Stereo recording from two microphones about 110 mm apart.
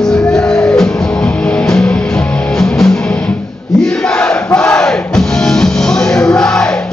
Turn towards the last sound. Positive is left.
turn(degrees=5)  # may be behind; listen again after turning